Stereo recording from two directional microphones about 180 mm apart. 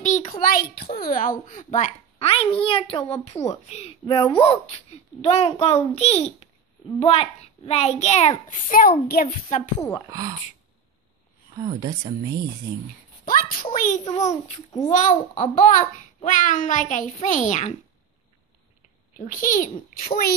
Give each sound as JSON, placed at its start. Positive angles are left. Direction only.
{"t": 0.3, "sound": "a child's voice", "side_deg": 50}
{"t": 9.8, "sound": "a child's voice", "side_deg": 20}
{"t": 10.1, "sound": "speech", "side_deg": -20}
{"t": 11.5, "sound": "speech", "side_deg": -20}
{"t": 13.2, "sound": "a child's voice", "side_deg": 50}
{"t": 14.3, "sound": "a child's voice", "side_deg": 20}
{"t": 14.9, "sound": "a child's voice", "side_deg": 45}
{"t": 19.1, "sound": "a child's voice", "side_deg": 50}